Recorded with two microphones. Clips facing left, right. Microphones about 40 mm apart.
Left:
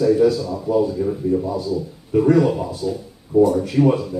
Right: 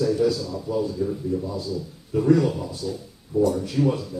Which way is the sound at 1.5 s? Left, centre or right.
Centre.